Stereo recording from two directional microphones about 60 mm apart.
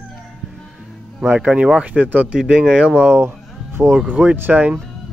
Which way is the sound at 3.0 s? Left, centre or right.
Right.